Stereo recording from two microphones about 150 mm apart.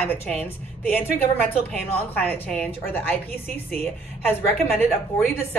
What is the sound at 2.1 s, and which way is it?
A woman's voice, 10° left (ahead or behind).